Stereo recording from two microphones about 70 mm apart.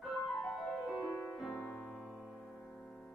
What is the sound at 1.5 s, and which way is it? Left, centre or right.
Music, left.